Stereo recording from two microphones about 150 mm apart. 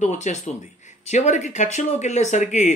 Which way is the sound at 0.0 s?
50° left (ahead or behind).